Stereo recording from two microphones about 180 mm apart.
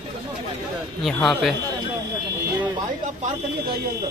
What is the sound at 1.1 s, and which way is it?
Speech, centre (ahead or behind).